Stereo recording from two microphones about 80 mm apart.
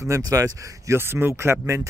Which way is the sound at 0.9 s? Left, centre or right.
Right.